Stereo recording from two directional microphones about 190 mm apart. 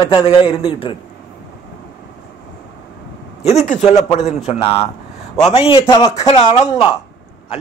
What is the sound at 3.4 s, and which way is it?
Speech, 40° left (ahead or behind).